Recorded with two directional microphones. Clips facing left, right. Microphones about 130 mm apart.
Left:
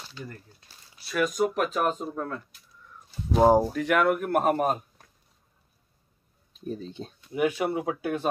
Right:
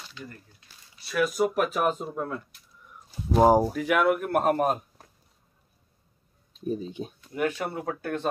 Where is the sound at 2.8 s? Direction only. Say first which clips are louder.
Even; 15° right (ahead or behind).